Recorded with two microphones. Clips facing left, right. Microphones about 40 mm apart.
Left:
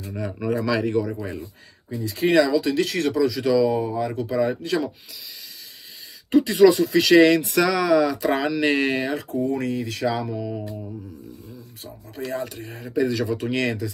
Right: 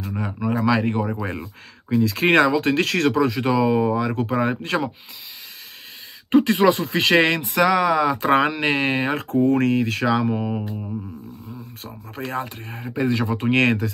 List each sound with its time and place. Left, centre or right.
0.1 s speech: right
1.9 s speech: right
6.3 s speech: right
8.2 s speech: right
8.5 s speech: right
9.1 s speech: right
11.8 s speech: right